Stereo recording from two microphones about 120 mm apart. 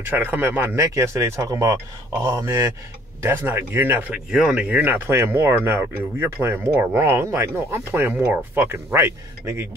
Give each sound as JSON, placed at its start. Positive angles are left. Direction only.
{"t": 0.0, "sound": "speech", "side_deg": -15}
{"t": 4.3, "sound": "speech", "side_deg": -5}